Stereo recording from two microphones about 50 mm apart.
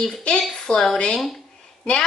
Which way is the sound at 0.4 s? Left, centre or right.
Centre.